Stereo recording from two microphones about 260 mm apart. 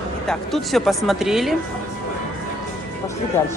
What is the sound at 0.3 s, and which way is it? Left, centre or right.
Speech, centre.